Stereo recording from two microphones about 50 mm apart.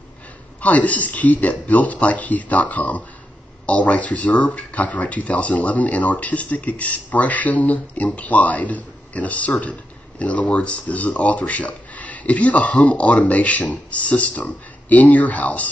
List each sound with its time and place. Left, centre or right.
0.6 s a man's voice: left